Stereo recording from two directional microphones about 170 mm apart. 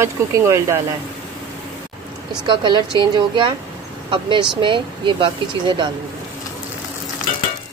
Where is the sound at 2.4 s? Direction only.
25° right (ahead or behind).